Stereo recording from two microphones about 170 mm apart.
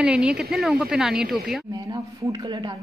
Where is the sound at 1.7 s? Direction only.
20° right (ahead or behind).